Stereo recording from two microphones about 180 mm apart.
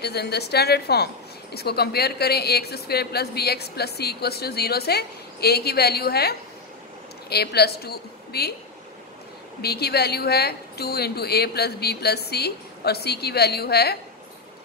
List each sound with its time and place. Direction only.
0.0 s a woman's voice: 65° left (ahead or behind)
9.6 s a woman's voice: 65° left (ahead or behind)